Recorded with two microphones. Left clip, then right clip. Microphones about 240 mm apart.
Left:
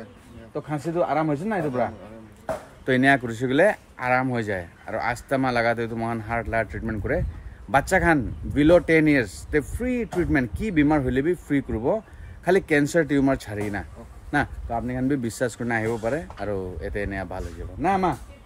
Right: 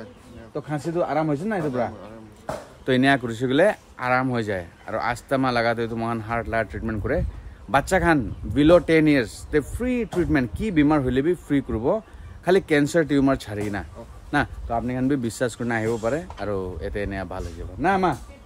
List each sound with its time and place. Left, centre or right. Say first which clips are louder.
0.6 s speech: even; centre